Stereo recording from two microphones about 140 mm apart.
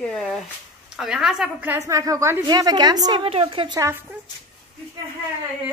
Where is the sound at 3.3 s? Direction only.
45° right (ahead or behind).